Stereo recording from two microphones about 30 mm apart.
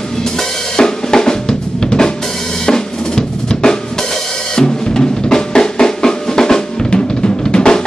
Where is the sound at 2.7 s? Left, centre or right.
Left.